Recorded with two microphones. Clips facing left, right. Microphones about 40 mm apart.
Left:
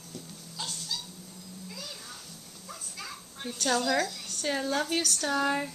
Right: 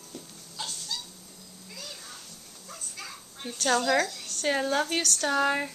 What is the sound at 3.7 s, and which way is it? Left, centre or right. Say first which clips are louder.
Speech: right 3 dB; centre.